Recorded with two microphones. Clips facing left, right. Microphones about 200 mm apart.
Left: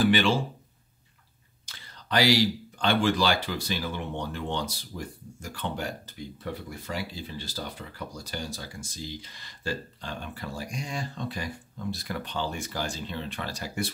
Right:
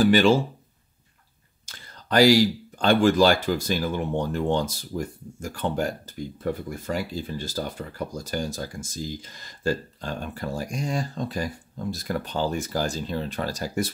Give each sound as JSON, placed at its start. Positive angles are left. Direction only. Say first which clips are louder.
{"t": 0.0, "sound": "speech", "louder": "right 5 dB", "side_deg": -45}
{"t": 1.7, "sound": "speech", "louder": "right 5 dB", "side_deg": -45}